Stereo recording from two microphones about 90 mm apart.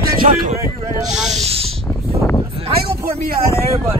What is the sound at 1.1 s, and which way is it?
Snake, 5° right (ahead or behind).